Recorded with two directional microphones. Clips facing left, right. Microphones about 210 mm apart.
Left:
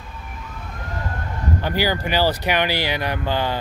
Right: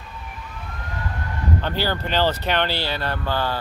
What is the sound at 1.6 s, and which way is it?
Speech, 10° left (ahead or behind).